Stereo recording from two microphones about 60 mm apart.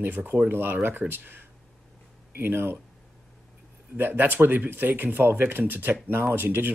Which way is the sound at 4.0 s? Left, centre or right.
Right.